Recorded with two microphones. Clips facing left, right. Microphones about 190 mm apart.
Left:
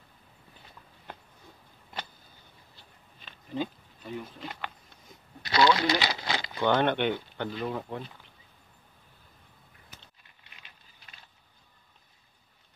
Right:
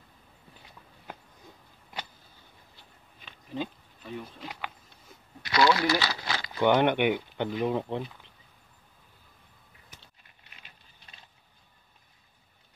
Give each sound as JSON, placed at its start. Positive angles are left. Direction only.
{"t": 3.5, "sound": "speech", "side_deg": 0}
{"t": 5.4, "sound": "a sound", "side_deg": 25}
{"t": 6.6, "sound": "speech", "side_deg": -15}